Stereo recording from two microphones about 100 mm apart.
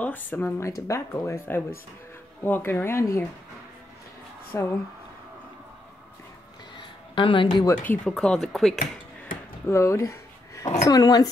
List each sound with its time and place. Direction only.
0.0 s speech: 15° left (ahead or behind)
0.6 s speech: 30° left (ahead or behind)
4.5 s speech: 20° left (ahead or behind)
6.8 s a sound: 55° left (ahead or behind)
7.8 s speech: 20° left (ahead or behind)
8.1 s speech: 5° left (ahead or behind)
9.7 s a sound: 30° left (ahead or behind)
10.9 s speech: 40° left (ahead or behind)